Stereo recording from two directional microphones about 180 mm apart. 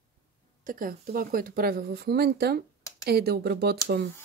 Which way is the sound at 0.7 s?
50° right (ahead or behind).